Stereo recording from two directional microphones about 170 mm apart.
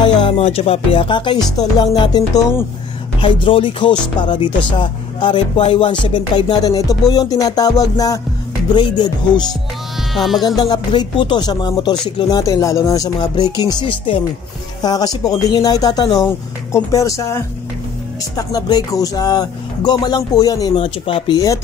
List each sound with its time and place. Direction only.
0.0 s speech: 30° left (ahead or behind)
10.1 s speech: centre (ahead or behind)
10.6 s speech: 25° left (ahead or behind)